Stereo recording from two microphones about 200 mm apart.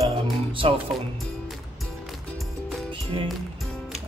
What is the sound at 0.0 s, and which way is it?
Music, 25° right (ahead or behind).